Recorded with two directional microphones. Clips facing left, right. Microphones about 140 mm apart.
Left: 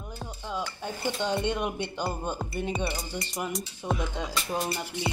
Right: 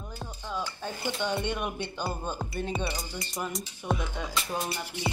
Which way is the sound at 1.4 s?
25° left (ahead or behind).